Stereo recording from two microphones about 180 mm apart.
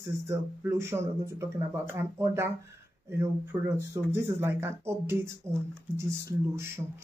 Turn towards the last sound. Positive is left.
turn(degrees=-15)  # may be behind; listen again after turning